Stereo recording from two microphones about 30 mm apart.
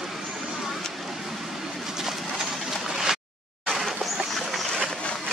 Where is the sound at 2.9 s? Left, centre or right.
Centre.